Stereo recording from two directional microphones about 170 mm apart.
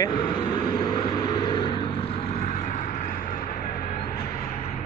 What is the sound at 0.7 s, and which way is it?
Vehicle, 25° left (ahead or behind).